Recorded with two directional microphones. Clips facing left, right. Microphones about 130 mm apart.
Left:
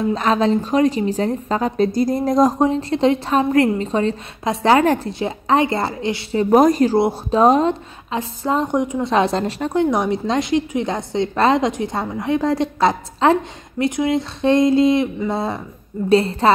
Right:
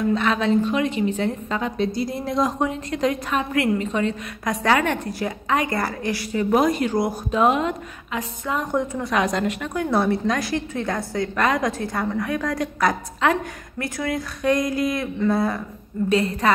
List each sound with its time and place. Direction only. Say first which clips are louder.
0.0 s a woman's voice: left 3 dB; 35° left (ahead or behind)
6.5 s a woman's voice: left 7 dB; 40° left (ahead or behind)
8.7 s a woman's voice: left 4 dB; 15° left (ahead or behind)
9.1 s a woman's voice: left 3 dB; 30° left (ahead or behind)
9.8 s a woman's voice: left 2 dB; 15° left (ahead or behind)